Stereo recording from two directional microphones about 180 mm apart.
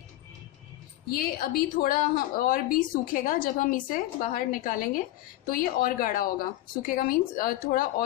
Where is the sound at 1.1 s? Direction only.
55° left (ahead or behind).